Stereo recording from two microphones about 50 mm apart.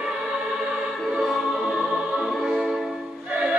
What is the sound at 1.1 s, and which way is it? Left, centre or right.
Music, centre.